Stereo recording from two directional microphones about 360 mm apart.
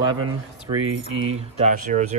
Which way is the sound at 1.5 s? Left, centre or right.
Centre.